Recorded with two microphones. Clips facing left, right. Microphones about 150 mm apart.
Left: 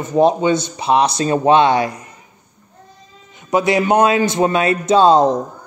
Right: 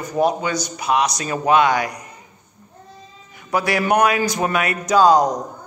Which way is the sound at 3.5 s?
20° left (ahead or behind).